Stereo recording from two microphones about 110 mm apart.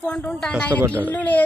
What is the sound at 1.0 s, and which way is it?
Speech, 15° left (ahead or behind).